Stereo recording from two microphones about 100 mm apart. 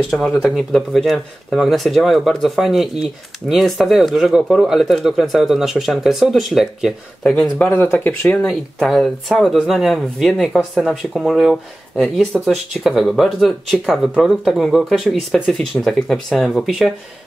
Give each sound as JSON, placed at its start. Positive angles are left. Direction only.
{"t": 0.4, "sound": "speech", "side_deg": 0}
{"t": 7.3, "sound": "speech", "side_deg": 15}
{"t": 8.4, "sound": "speech", "side_deg": 0}